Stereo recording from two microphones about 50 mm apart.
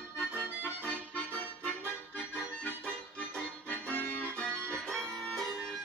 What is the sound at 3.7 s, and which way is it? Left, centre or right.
Music, left.